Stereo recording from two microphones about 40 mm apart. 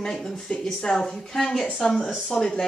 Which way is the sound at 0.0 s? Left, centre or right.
Centre.